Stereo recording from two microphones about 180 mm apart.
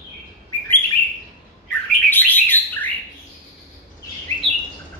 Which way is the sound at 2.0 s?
10° left (ahead or behind).